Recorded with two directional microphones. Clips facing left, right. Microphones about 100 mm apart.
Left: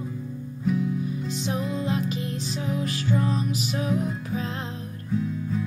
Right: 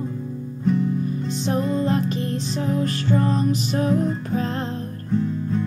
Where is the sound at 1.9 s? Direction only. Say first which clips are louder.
Right 5 dB; 40° right (ahead or behind).